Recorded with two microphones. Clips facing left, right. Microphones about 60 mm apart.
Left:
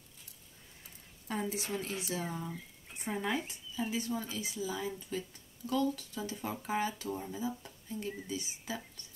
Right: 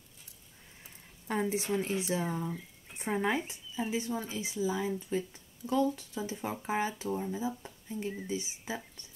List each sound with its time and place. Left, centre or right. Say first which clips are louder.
0.8 s speech: right 4 dB; right
7.1 s speech: right 4 dB; centre